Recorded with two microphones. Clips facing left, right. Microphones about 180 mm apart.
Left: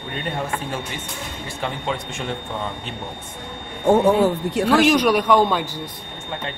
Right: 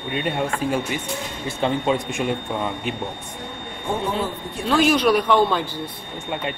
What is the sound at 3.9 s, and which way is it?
Speech, 75° left (ahead or behind).